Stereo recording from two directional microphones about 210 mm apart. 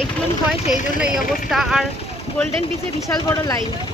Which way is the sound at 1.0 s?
Centre (ahead or behind).